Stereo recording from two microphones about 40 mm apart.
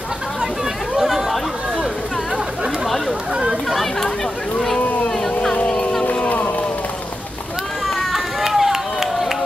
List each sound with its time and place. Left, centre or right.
0.9 s chatter: centre
5.0 s a sound: centre
6.2 s run: left
8.0 s run: centre